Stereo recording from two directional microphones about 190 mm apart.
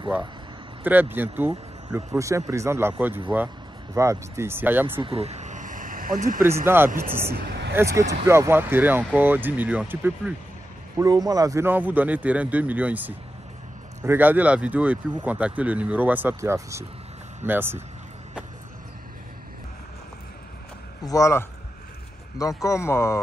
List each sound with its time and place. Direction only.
0.8 s speech: 10° right (ahead or behind)
5.0 s a sound: 30° right (ahead or behind)
6.4 s speech: 10° right (ahead or behind)
7.3 s a sound: 60° right (ahead or behind)
7.7 s speech: 15° right (ahead or behind)
11.0 s speech: 20° right (ahead or behind)
21.0 s speech: 15° left (ahead or behind)